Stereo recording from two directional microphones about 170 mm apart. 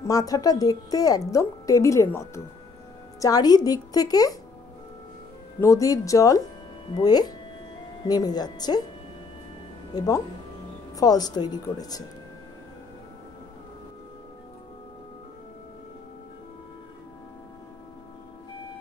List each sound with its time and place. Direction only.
0.0 s a woman's voice: 20° left (ahead or behind)
5.6 s speech: 20° left (ahead or behind)
9.9 s speech: 20° left (ahead or behind)